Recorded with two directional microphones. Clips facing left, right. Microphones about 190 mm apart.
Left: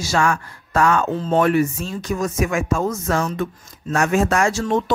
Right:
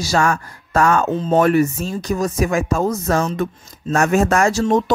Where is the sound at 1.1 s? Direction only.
20° right (ahead or behind).